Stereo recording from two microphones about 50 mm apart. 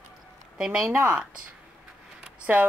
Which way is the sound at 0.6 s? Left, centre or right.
Centre.